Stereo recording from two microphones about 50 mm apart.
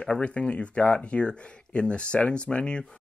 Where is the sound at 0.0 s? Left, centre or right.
Left.